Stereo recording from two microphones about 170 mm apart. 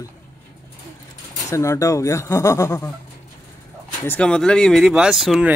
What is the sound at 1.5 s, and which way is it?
Speech, 15° left (ahead or behind).